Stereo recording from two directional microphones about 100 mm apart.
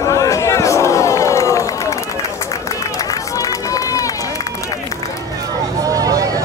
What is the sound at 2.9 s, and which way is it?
Run, 35° left (ahead or behind).